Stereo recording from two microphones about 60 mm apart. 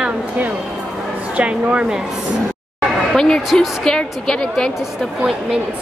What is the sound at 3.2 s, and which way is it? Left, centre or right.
A woman's voice, centre.